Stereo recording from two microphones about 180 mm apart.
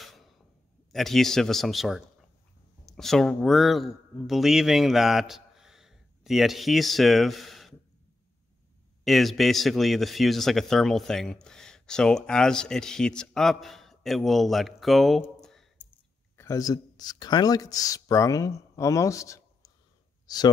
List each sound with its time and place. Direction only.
0.9 s a man's voice: centre (ahead or behind)
9.0 s speech: centre (ahead or behind)
16.3 s speech: 20° left (ahead or behind)